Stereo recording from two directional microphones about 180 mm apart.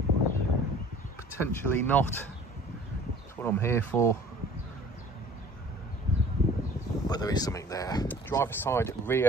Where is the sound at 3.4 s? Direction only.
15° left (ahead or behind).